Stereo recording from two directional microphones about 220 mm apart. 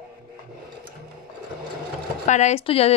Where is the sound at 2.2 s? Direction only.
30° left (ahead or behind).